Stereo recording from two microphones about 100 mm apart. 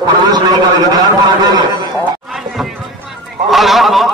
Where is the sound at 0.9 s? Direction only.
40° right (ahead or behind).